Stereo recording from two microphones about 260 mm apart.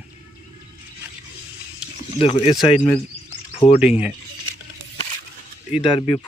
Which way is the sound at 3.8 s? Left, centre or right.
Centre.